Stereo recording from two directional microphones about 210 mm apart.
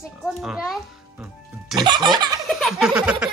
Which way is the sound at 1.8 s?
20° right (ahead or behind).